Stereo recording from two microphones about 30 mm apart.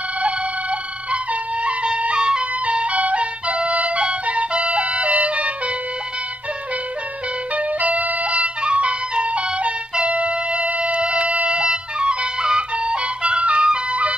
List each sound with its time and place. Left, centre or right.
0.2 s music: right
2.1 s music: right
2.6 s music: right
7.5 s music: right